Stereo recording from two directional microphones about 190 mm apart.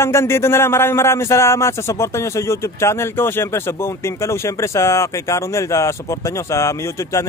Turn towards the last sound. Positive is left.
turn(degrees=15)  # may be behind; listen again after turning